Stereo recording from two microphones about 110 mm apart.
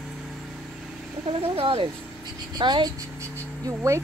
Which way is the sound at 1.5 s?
55° right (ahead or behind).